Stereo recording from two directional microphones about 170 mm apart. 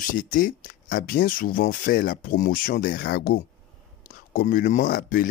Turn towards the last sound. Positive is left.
turn(degrees=55)  # may be behind; listen again after turning